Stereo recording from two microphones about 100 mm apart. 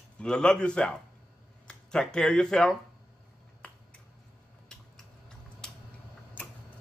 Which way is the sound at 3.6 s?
10° left (ahead or behind).